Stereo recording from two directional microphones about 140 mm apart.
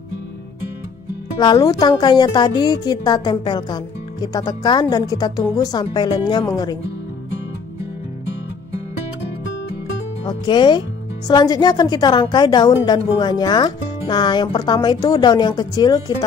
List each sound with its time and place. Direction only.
1.4 s a woman's voice: 30° left (ahead or behind)
10.2 s speech: 30° left (ahead or behind)